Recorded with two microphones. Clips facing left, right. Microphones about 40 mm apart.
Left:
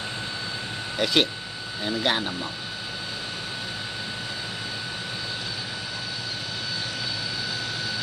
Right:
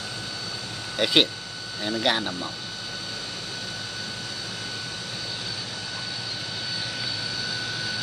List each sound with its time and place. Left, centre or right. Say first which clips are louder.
0.9 s speech: right 1 dB; centre
1.9 s speech: right 1 dB; centre